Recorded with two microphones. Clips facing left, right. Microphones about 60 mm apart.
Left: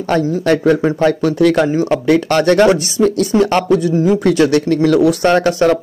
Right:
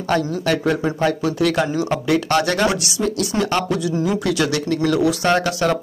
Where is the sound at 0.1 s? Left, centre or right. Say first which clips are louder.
Left 5 dB; left.